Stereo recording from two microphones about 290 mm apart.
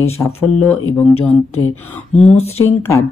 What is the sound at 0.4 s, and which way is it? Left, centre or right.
Speech, left.